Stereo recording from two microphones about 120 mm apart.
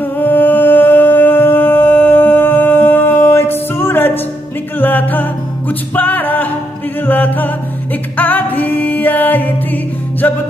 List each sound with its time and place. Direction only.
0.0 s music: 15° left (ahead or behind)